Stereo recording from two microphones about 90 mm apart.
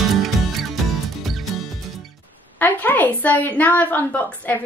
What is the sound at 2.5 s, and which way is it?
A woman's voice, 20° left (ahead or behind).